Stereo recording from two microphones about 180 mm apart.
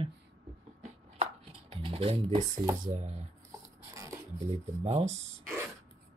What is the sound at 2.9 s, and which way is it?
Speech, 35° right (ahead or behind).